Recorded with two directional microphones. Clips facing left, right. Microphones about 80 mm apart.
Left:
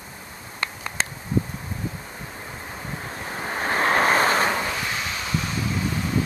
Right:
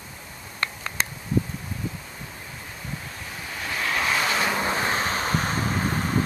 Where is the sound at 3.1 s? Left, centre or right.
Left.